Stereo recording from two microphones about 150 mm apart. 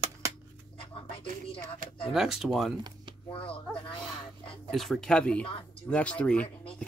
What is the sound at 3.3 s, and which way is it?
Speech, 35° left (ahead or behind).